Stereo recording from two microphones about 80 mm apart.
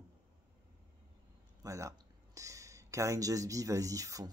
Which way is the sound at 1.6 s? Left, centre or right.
Right.